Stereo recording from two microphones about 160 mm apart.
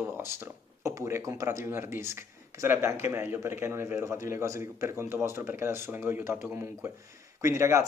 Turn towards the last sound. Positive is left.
turn(degrees=-20)  # may be behind; listen again after turning